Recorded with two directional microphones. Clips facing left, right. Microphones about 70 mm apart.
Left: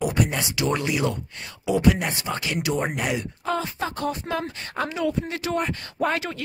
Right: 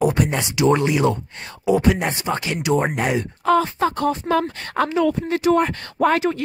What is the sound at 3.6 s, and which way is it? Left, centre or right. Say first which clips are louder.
Speech: right 7 dB; right.